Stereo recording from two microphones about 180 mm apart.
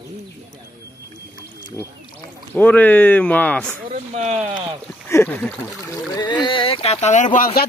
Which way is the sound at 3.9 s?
40° right (ahead or behind).